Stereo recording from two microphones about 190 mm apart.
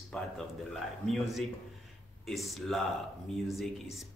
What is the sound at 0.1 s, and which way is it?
Speech, 5° left (ahead or behind).